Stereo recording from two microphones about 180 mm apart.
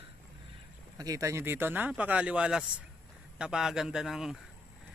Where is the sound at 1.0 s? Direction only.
20° right (ahead or behind); by 4.3 s 5° right (ahead or behind).